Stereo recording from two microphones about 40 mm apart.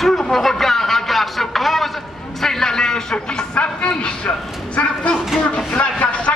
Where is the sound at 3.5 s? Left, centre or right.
Left.